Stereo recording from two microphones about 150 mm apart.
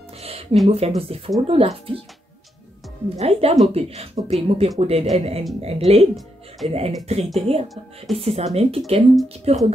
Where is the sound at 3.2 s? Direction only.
40° right (ahead or behind).